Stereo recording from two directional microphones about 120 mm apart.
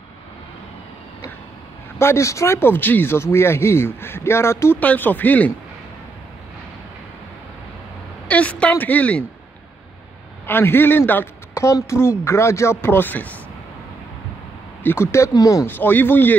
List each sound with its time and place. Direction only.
2.0 s speech: 20° left (ahead or behind)
8.3 s a woman's voice: 10° left (ahead or behind)
10.4 s speech: 20° left (ahead or behind)
14.8 s speech: 20° left (ahead or behind)
15.6 s a woman's voice: 15° left (ahead or behind)